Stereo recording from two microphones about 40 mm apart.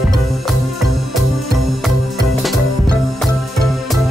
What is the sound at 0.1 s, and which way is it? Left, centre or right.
Music, centre.